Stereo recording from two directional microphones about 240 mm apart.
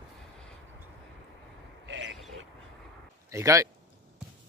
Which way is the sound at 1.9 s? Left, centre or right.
Right.